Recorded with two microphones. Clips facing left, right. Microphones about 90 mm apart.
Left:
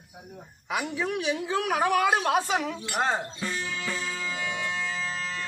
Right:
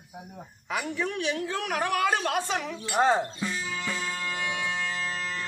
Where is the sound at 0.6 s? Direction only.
5° left (ahead or behind).